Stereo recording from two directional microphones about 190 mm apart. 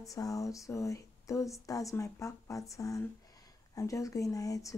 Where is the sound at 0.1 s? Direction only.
20° left (ahead or behind).